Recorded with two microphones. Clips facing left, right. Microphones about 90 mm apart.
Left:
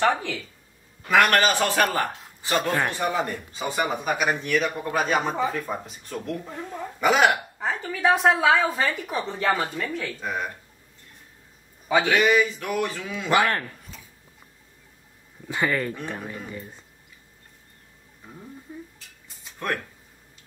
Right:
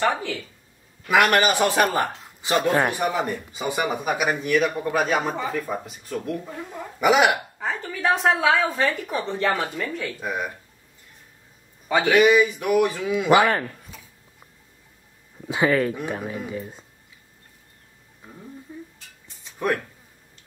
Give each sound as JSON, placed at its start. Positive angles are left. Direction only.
{"t": 0.0, "sound": "speech", "side_deg": 0}
{"t": 1.0, "sound": "speech", "side_deg": -10}
{"t": 7.5, "sound": "speech", "side_deg": 0}
{"t": 10.2, "sound": "speech", "side_deg": -10}
{"t": 11.9, "sound": "speech", "side_deg": -5}
{"t": 12.2, "sound": "speech", "side_deg": -15}
{"t": 15.4, "sound": "speech", "side_deg": -15}